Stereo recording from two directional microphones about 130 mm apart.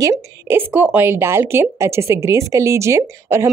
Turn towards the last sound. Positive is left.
turn(degrees=-20)  # may be behind; listen again after turning